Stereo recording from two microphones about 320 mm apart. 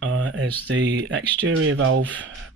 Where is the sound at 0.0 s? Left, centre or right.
Right.